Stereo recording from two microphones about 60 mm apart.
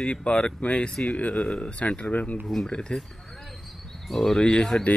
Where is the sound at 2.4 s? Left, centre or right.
Centre.